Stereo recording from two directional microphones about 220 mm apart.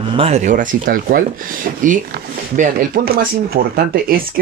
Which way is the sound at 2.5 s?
40° right (ahead or behind).